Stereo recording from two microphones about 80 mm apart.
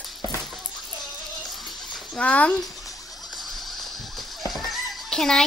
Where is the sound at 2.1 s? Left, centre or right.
Centre.